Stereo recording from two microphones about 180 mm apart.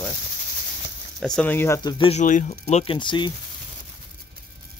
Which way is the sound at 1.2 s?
5° left (ahead or behind).